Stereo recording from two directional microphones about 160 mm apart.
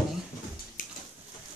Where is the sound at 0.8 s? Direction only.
60° left (ahead or behind).